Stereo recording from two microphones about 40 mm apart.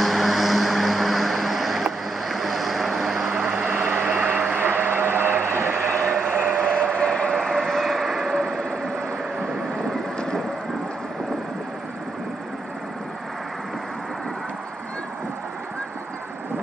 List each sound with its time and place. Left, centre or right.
0.0 s vehicle: centre
3.3 s vehicle: right
3.7 s vehicle: right
4.0 s vehicle: right
4.6 s vehicle: right
6.7 s train: left
7.3 s vehicle: centre
8.0 s vehicle: centre
10.1 s vehicle: centre